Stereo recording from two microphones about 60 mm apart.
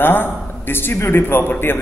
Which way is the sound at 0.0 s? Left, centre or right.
Left.